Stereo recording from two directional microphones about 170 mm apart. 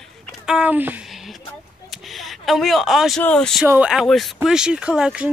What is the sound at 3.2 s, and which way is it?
Speech, 5° left (ahead or behind).